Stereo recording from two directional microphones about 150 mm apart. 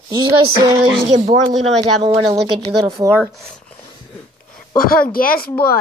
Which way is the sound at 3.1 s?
15° right (ahead or behind).